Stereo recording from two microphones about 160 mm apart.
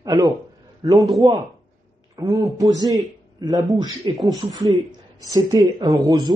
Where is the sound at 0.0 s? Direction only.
20° right (ahead or behind).